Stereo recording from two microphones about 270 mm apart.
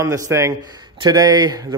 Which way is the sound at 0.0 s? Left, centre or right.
Centre.